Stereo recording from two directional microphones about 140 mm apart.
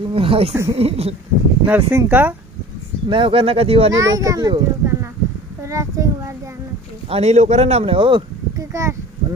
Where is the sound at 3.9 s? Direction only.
25° right (ahead or behind).